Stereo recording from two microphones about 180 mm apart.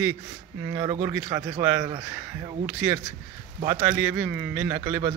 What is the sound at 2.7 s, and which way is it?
A man's voice, 10° right (ahead or behind).